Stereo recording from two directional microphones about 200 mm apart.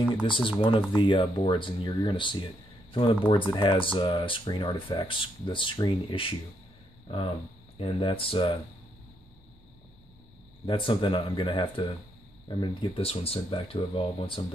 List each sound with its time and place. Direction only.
0.6 s speech: 25° left (ahead or behind)
7.8 s speech: 25° left (ahead or behind)
10.6 s speech: 25° left (ahead or behind)